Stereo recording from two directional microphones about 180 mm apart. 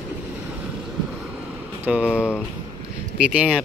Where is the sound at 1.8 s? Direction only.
5° right (ahead or behind).